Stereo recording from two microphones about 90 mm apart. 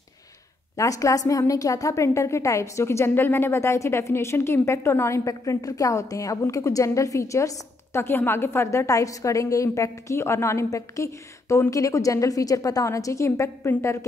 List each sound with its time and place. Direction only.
0.7 s a woman's voice: 40° left (ahead or behind)